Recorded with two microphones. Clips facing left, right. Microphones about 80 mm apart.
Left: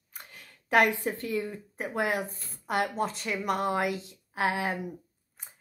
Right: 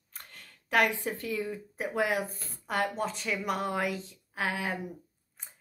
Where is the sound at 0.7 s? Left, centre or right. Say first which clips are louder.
Left 3 dB; left.